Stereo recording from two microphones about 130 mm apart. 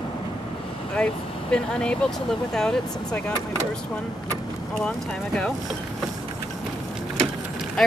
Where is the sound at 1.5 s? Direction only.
5° left (ahead or behind).